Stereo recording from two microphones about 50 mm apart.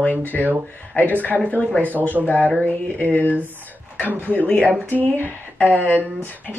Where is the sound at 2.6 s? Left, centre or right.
Left.